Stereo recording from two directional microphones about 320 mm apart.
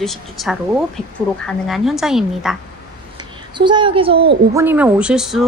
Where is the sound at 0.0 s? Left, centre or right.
Centre.